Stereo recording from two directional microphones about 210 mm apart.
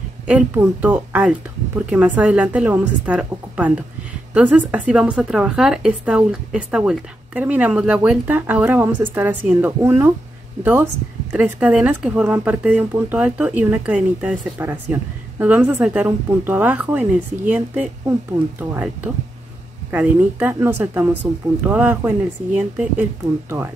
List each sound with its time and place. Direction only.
0.3 s speech: 5° right (ahead or behind)
19.9 s speech: 5° right (ahead or behind)